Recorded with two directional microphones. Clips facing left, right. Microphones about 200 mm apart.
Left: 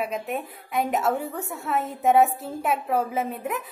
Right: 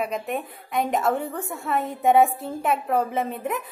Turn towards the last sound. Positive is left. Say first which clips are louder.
# right 1 dB
turn(degrees=0)  # may be behind; listen again after turning